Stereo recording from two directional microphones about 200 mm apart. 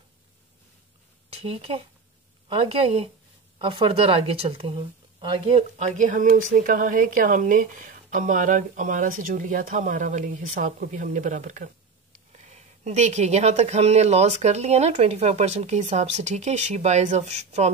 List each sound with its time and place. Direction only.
1.3 s speech: 30° right (ahead or behind)